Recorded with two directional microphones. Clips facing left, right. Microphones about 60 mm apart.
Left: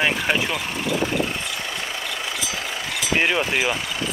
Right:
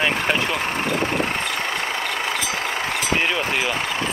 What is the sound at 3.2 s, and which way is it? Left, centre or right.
Speech, centre.